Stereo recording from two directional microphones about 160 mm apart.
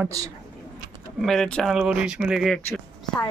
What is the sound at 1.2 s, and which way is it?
Speech, centre (ahead or behind).